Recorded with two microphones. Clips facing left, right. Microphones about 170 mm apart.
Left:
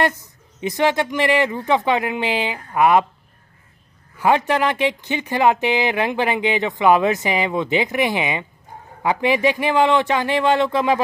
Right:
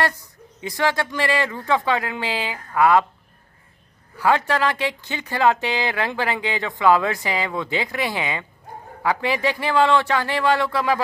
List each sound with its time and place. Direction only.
0.0 s speech: 20° left (ahead or behind)
4.2 s speech: 20° left (ahead or behind)